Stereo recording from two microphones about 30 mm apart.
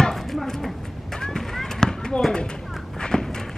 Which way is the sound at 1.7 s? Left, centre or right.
Left.